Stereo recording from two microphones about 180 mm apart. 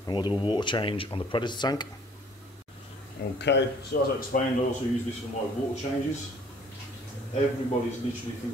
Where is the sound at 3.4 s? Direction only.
75° left (ahead or behind).